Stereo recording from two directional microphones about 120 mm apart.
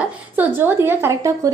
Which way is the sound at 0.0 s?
15° right (ahead or behind).